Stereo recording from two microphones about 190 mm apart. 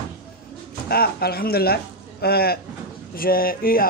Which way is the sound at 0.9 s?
55° left (ahead or behind).